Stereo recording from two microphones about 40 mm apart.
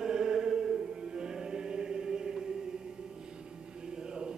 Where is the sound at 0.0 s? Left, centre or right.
Centre.